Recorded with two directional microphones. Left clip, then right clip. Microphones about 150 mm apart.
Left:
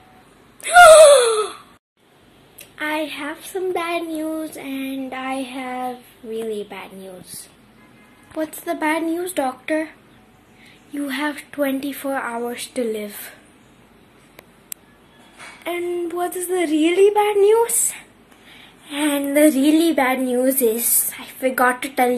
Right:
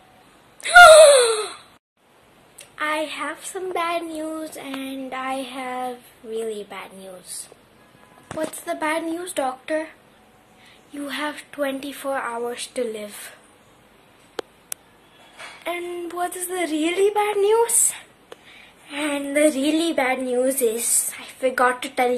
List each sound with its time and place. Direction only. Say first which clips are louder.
0.6 s a sound: left 1 dB; 10° right (ahead or behind)
2.6 s child singing: even; 10° right (ahead or behind)
6.4 s a woman's voice: left 2 dB; centre (ahead or behind)
6.9 s child singing: left 2 dB; 10° right (ahead or behind)
8.4 s a woman's voice: left 2 dB; centre (ahead or behind)
15.3 s a sound: left 2 dB; centre (ahead or behind)
15.9 s child singing: left 4 dB; 5° right (ahead or behind)
18.5 s a woman's voice: left 4 dB; centre (ahead or behind)